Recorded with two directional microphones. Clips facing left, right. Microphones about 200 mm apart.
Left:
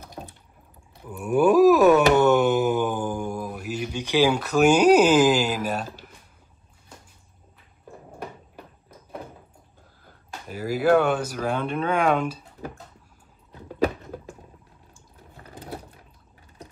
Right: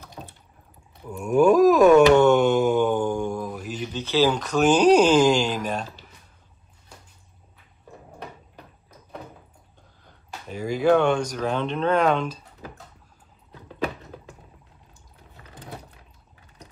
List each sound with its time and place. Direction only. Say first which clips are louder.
1.2 s a sound: even; 5° left (ahead or behind)
10.0 s speech: even; 5° left (ahead or behind)
15.4 s sewing machine: left 4 dB; 40° left (ahead or behind)